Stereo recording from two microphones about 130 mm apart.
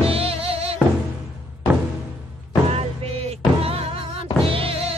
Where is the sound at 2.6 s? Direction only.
50° right (ahead or behind).